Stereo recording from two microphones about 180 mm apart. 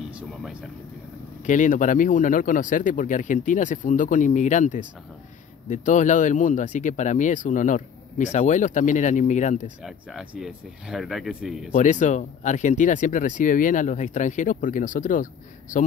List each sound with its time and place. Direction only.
1.4 s speech: 45° left (ahead or behind)
9.8 s speech: centre (ahead or behind)
11.7 s speech: 45° left (ahead or behind)